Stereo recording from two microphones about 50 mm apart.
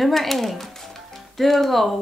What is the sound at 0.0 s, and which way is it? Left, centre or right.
Speech, centre.